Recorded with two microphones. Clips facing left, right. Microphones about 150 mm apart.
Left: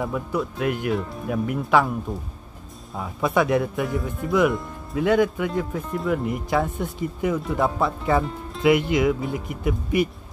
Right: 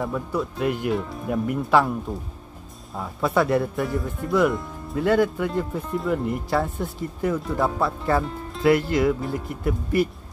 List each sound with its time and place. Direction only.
0.0 s speech: centre (ahead or behind)
3.0 s speech: 10° left (ahead or behind)
3.3 s speech: centre (ahead or behind)